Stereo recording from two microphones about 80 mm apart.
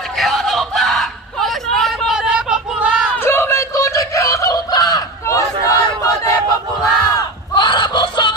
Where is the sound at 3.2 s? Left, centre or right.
Left.